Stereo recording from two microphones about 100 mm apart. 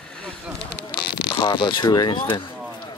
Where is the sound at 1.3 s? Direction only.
50° left (ahead or behind).